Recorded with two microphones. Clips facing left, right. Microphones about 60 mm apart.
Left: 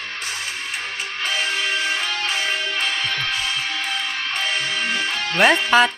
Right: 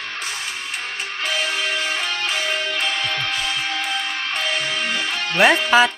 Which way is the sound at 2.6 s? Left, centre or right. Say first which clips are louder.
Even; centre.